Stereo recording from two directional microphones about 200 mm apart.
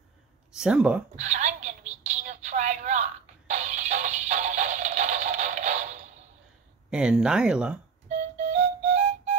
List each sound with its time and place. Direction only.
0.6 s speech: 5° right (ahead or behind)
1.1 s telephone: 35° right (ahead or behind)
6.9 s speech: 5° right (ahead or behind)
8.5 s music: 35° right (ahead or behind)